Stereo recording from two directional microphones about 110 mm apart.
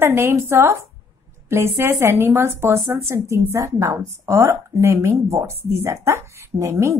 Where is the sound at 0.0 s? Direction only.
20° right (ahead or behind).